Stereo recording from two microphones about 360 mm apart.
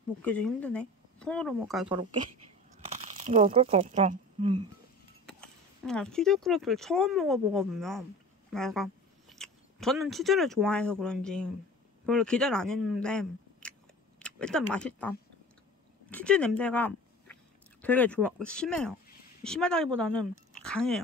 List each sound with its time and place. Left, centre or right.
0.2 s speech: centre
1.9 s speech: centre
5.2 s speech: centre